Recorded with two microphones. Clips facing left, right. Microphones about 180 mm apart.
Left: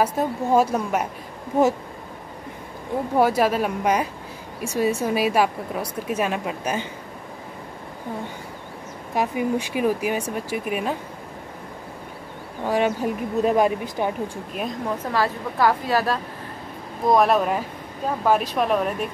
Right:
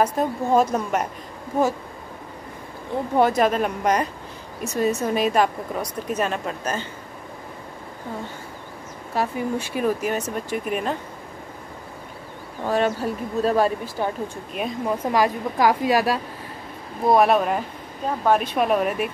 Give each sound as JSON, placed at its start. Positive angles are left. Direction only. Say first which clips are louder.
{"t": 0.0, "sound": "a woman's voice", "louder": "right 1 dB", "side_deg": 5}
{"t": 3.2, "sound": "a woman's voice", "louder": "right 1 dB", "side_deg": 5}
{"t": 9.1, "sound": "a woman's voice", "louder": "left 2 dB", "side_deg": 15}
{"t": 12.6, "sound": "a woman's voice", "louder": "even", "side_deg": 15}
{"t": 14.5, "sound": "speech", "louder": "right 1 dB", "side_deg": 0}
{"t": 15.0, "sound": "a woman's voice", "louder": "right 4 dB", "side_deg": -15}
{"t": 17.1, "sound": "speech", "louder": "right 1 dB", "side_deg": 0}